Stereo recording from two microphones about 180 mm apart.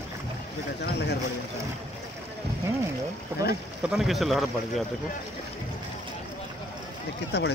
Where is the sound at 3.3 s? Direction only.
10° right (ahead or behind).